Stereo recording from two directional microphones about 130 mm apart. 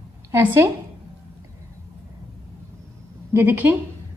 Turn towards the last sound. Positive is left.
turn(degrees=-15)  # may be behind; listen again after turning